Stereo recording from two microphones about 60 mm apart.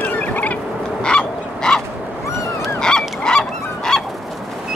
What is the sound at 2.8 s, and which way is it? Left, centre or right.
Goose, centre.